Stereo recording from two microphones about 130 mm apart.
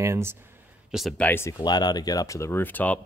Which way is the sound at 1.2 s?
15° left (ahead or behind).